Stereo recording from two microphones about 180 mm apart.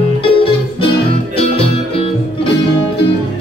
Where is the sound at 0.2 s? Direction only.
30° left (ahead or behind).